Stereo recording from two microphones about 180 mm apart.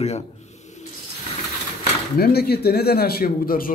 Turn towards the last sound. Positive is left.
turn(degrees=55)  # may be behind; listen again after turning